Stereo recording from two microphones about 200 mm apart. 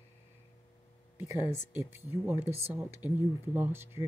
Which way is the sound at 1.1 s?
15° right (ahead or behind).